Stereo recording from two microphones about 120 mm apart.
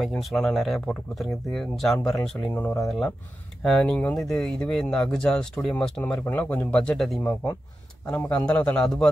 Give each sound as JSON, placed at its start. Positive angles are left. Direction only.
{"t": 0.0, "sound": "a man's voice", "side_deg": 0}
{"t": 2.8, "sound": "a man's voice", "side_deg": 0}